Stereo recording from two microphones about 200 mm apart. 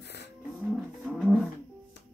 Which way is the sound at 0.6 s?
Centre (ahead or behind).